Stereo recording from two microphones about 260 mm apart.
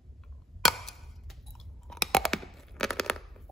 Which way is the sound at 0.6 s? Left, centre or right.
Centre.